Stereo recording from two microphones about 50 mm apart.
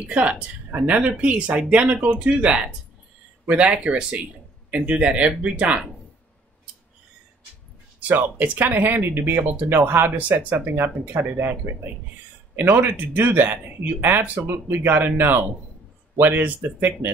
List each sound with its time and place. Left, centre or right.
0.0 s speech: right
8.1 s speech: right